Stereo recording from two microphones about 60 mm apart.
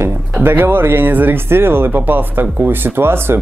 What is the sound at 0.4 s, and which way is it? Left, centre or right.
Speech, right.